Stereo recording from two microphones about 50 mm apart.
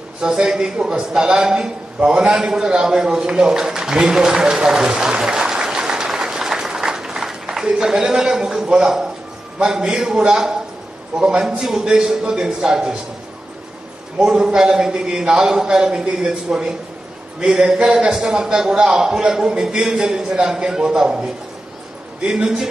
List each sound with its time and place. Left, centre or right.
0.2 s a man's voice: centre
14.1 s a man's voice: centre
17.7 s a man's voice: centre
22.2 s a man's voice: centre